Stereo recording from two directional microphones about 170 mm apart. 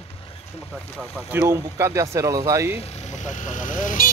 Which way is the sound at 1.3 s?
15° right (ahead or behind).